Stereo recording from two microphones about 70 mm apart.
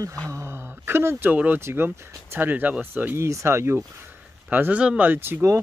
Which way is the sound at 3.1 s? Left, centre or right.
Right.